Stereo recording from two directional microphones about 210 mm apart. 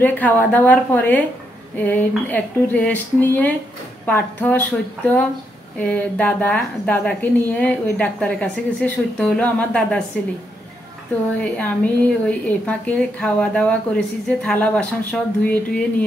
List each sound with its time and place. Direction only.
0.0 s a woman's voice: 10° left (ahead or behind)
11.3 s a woman's voice: 5° left (ahead or behind)